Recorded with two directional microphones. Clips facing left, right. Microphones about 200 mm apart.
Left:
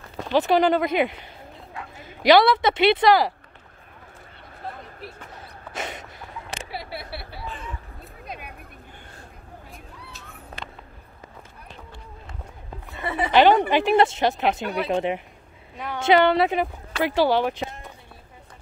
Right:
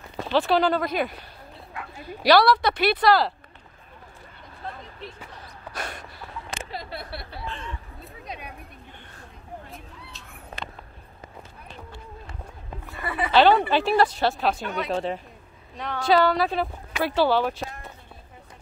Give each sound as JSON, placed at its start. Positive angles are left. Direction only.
{"t": 0.3, "sound": "speech", "side_deg": 15}
{"t": 5.8, "sound": "a sound", "side_deg": 20}
{"t": 6.7, "sound": "chatter", "side_deg": 10}
{"t": 12.8, "sound": "speech", "side_deg": 20}
{"t": 15.7, "sound": "a woman's voice", "side_deg": 5}
{"t": 16.0, "sound": "speech", "side_deg": 25}